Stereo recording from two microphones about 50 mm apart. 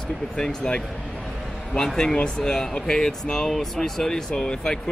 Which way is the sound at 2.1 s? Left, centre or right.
Centre.